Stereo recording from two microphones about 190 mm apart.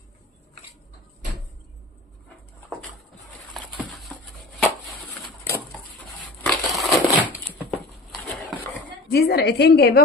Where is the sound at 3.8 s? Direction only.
10° left (ahead or behind).